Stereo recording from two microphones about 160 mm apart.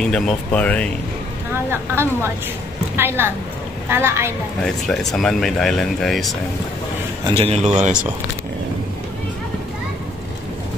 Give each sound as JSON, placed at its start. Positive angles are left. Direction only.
{"t": 0.0, "sound": "speech", "side_deg": 5}
{"t": 1.7, "sound": "a woman's voice", "side_deg": -15}
{"t": 4.8, "sound": "speech", "side_deg": 0}
{"t": 7.3, "sound": "speech", "side_deg": -40}